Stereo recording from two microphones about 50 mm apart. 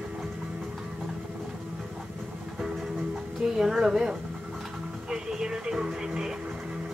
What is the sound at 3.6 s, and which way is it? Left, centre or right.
Speech, centre.